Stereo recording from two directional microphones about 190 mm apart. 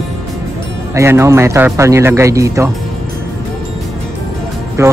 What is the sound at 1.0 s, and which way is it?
Speech, 15° right (ahead or behind).